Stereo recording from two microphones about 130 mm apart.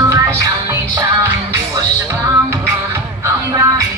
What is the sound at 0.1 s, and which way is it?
Music, 25° right (ahead or behind).